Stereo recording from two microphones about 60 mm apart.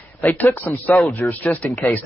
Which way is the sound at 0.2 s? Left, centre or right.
Left.